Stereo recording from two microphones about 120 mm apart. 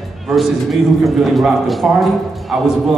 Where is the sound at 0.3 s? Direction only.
Centre (ahead or behind).